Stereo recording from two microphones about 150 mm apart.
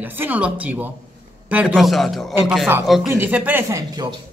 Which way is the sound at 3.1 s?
15° right (ahead or behind).